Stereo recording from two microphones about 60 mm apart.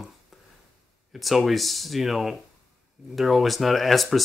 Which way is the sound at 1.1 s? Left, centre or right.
Centre.